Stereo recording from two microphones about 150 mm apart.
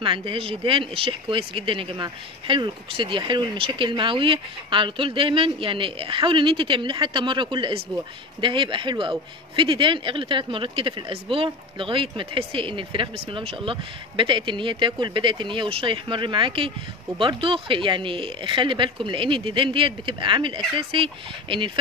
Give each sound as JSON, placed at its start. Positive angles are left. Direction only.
{"t": 0.0, "sound": "speech", "side_deg": -35}